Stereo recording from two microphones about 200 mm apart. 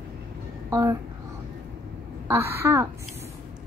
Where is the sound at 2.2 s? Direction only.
10° right (ahead or behind).